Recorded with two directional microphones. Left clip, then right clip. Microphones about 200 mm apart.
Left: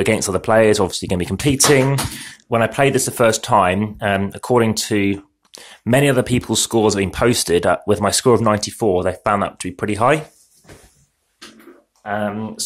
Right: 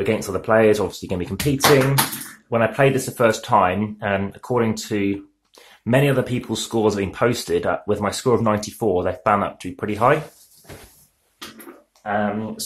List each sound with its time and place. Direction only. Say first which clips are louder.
0.0 s speech: left 4 dB; 40° left (ahead or behind)
12.0 s speech: even; 50° left (ahead or behind)